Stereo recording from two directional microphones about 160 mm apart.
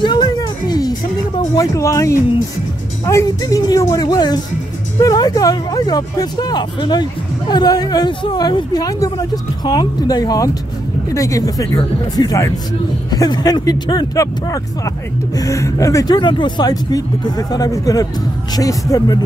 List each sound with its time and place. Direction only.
0.0 s music: 25° left (ahead or behind)
1.5 s speech: 20° left (ahead or behind)